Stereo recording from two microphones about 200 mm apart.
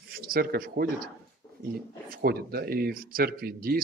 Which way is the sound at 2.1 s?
50° right (ahead or behind).